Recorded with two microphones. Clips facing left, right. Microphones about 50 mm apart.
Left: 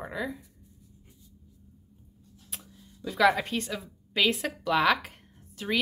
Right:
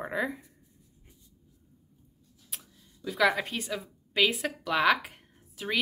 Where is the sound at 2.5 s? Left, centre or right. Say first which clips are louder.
Left 2 dB; centre.